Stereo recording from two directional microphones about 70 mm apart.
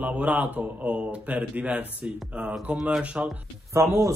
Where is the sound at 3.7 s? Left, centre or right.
Right.